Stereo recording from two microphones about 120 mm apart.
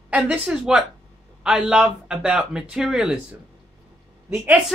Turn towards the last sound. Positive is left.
turn(degrees=-15)  # may be behind; listen again after turning